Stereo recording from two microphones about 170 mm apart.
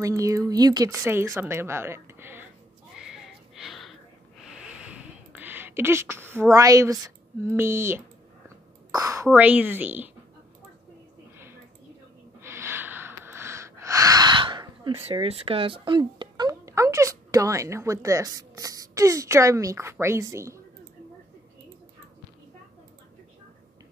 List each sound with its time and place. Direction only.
0.0 s speech: 20° right (ahead or behind)
3.0 s wheeze: centre (ahead or behind)
4.5 s a sound: 5° right (ahead or behind)
6.5 s speech: 20° right (ahead or behind)
12.4 s a sound: 15° right (ahead or behind)
15.0 s a woman's voice: 35° right (ahead or behind); by 20.6 s 15° right (ahead or behind)